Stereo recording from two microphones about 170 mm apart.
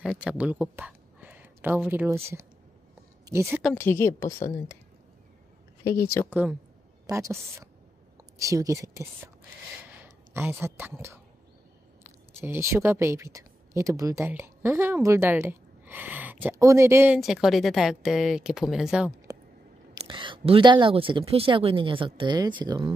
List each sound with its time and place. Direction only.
0.0 s speech: 5° right (ahead or behind)
3.7 s a woman's voice: 15° left (ahead or behind)
6.2 s a woman's voice: 15° left (ahead or behind)
7.1 s speech: 15° right (ahead or behind)
12.4 s speech: 15° right (ahead or behind)
17.2 s speech: centre (ahead or behind)
20.1 s speech: 30° right (ahead or behind)